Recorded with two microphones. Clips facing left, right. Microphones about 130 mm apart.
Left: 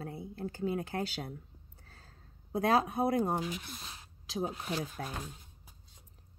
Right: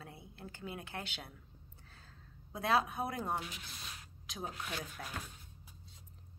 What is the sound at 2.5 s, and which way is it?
A woman's voice, 40° left (ahead or behind).